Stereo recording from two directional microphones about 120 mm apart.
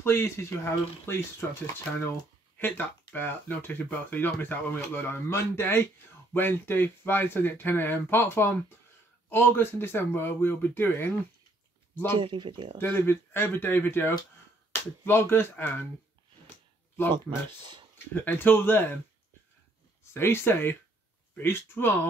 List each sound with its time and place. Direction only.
0.0 s speech: 20° left (ahead or behind)
12.1 s speech: 45° right (ahead or behind)
12.7 s speech: 20° left (ahead or behind)
17.1 s speech: 40° right (ahead or behind)
17.9 s speech: 15° left (ahead or behind)
20.0 s speech: 20° left (ahead or behind)